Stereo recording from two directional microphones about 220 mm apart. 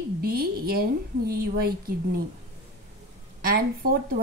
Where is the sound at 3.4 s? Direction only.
40° right (ahead or behind).